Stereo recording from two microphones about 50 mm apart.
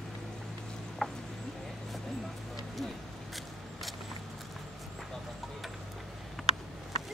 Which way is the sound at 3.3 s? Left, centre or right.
Centre.